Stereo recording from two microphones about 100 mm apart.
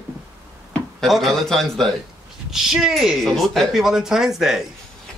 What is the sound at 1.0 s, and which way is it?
Speech, centre (ahead or behind).